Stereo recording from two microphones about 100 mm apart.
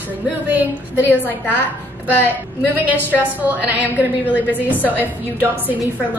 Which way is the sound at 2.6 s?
15° right (ahead or behind).